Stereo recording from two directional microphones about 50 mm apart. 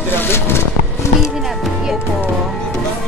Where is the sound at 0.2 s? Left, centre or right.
Left.